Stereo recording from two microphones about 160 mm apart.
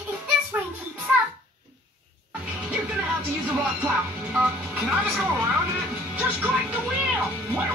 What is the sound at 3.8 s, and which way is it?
Speech, 5° right (ahead or behind).